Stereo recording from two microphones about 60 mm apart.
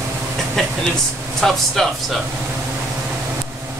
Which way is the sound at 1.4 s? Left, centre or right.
Centre.